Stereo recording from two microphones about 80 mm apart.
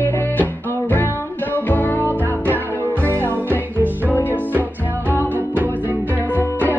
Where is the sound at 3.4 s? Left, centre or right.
Right.